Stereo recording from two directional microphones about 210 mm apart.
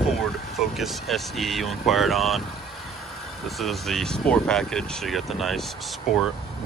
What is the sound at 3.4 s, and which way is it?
Speech, centre (ahead or behind).